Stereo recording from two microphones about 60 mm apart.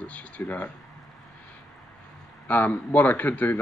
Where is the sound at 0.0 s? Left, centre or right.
Left.